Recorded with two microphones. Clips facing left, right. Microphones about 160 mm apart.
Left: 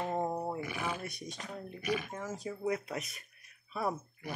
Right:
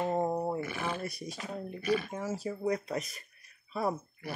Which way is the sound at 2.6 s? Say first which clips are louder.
Right 2 dB; 5° left (ahead or behind).